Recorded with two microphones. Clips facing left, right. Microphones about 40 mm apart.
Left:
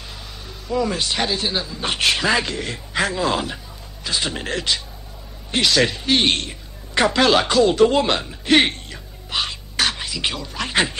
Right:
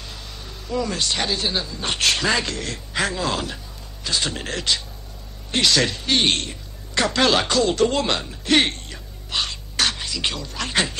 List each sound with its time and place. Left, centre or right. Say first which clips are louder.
0.7 s speech: left 2 dB; centre
6.9 s music: left 4 dB; centre
7.2 s speech: left 2 dB; centre